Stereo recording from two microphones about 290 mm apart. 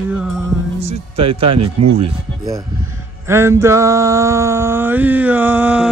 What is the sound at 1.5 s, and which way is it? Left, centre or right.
Speech, right.